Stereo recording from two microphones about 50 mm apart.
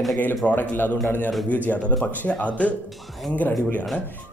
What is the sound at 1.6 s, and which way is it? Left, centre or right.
A man's voice, left.